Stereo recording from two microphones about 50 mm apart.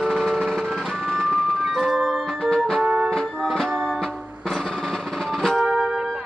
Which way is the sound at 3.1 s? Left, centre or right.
Centre.